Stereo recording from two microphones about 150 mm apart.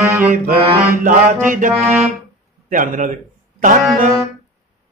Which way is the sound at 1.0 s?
60° right (ahead or behind).